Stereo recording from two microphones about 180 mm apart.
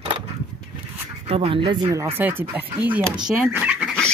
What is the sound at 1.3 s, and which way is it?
Speech, 30° right (ahead or behind).